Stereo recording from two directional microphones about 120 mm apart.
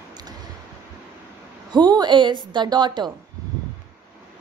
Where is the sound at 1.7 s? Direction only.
35° right (ahead or behind).